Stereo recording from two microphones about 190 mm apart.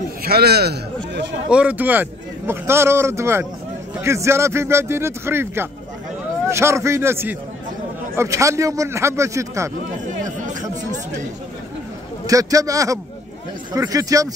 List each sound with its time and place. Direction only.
0.2 s a man's voice: 55° right (ahead or behind)
1.5 s a man's voice: 5° right (ahead or behind)
10.2 s chatter: 40° right (ahead or behind)
12.3 s a man's voice: 20° right (ahead or behind)